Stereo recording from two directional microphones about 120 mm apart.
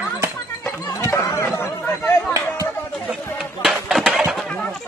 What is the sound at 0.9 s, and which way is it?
Chatter, 25° left (ahead or behind).